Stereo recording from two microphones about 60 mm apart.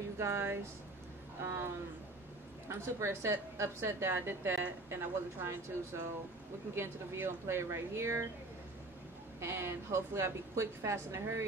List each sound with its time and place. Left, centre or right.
0.2 s a woman's voice: right
2.8 s a woman's voice: right
9.4 s a woman's voice: right